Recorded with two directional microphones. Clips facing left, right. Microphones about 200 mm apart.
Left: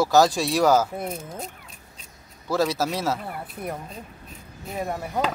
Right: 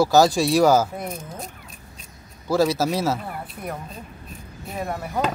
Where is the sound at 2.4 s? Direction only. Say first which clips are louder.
Right 3 dB; 5° right (ahead or behind).